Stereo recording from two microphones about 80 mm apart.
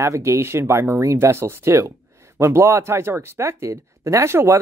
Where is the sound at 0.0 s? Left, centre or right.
Right.